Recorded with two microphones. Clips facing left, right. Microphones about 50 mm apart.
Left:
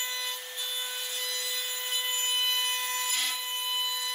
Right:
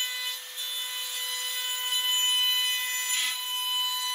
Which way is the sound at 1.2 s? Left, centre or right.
Right.